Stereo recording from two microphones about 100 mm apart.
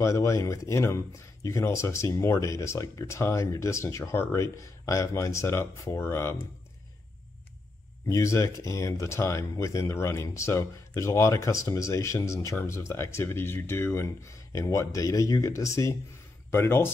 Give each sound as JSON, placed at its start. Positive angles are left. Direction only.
{"t": 0.0, "sound": "speech", "side_deg": 30}
{"t": 8.1, "sound": "speech", "side_deg": 30}